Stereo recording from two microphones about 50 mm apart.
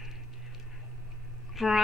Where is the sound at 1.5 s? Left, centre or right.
Centre.